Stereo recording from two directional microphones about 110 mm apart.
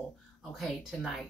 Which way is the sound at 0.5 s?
Centre (ahead or behind).